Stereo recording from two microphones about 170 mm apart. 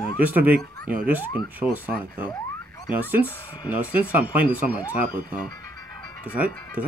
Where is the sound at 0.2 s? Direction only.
10° right (ahead or behind).